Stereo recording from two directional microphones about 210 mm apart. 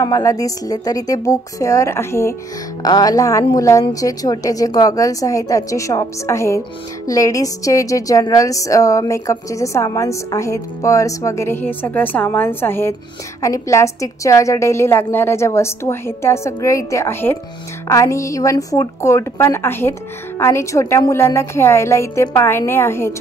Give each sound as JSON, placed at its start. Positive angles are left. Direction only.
{"t": 0.0, "sound": "a woman's voice", "side_deg": 15}